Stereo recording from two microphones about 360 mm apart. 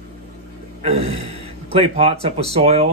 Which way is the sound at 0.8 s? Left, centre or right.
Centre.